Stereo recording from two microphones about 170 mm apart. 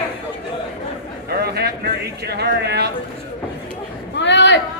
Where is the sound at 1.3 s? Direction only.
70° right (ahead or behind).